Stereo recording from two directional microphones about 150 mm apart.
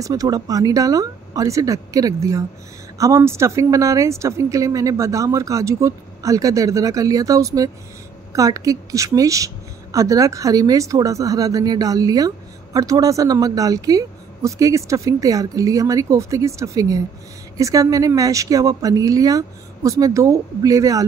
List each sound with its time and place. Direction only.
0.0 s a woman's voice: 25° right (ahead or behind)